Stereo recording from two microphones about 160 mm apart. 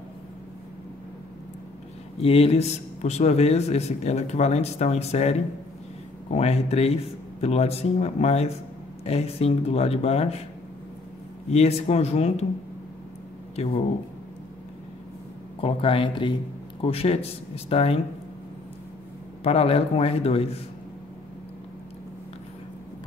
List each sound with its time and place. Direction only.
2.1 s a man's voice: 40° left (ahead or behind)
11.5 s speech: 40° left (ahead or behind)
13.6 s speech: 35° left (ahead or behind)
15.6 s speech: 35° left (ahead or behind)
19.4 s speech: 40° left (ahead or behind)